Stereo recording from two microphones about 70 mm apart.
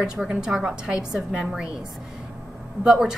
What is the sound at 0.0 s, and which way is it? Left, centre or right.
A woman's voice, centre.